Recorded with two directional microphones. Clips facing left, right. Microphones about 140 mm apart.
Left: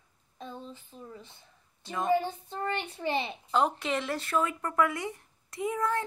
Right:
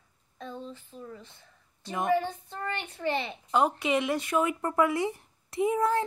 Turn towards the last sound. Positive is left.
turn(degrees=-25)  # may be behind; listen again after turning